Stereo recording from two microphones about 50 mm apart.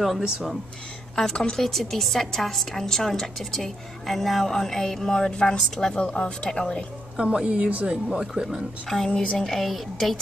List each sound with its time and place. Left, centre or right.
1.1 s a woman's voice: centre
1.6 s a woman's voice: centre
7.2 s speech: right
8.8 s a woman's voice: centre